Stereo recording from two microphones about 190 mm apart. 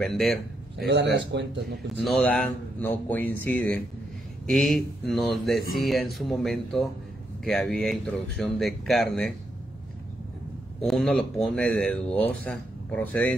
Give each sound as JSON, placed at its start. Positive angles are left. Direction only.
{"t": 0.0, "sound": "a man's voice", "side_deg": 0}
{"t": 0.9, "sound": "speech", "side_deg": -65}
{"t": 2.0, "sound": "speech", "side_deg": 0}
{"t": 10.8, "sound": "speech", "side_deg": 0}